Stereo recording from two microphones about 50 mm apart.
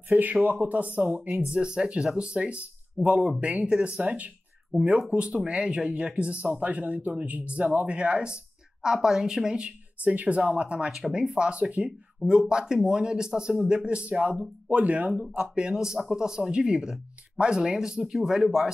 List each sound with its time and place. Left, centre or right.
0.1 s speech: right
1.5 s speech: centre
4.0 s speech: right
8.8 s speech: centre
10.0 s speech: right
10.9 s speech: centre
13.7 s speech: centre
15.5 s speech: centre